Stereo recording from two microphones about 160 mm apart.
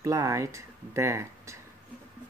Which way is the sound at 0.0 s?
20° right (ahead or behind).